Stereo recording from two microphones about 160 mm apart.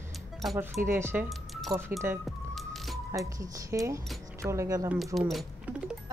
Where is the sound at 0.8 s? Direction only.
15° right (ahead or behind).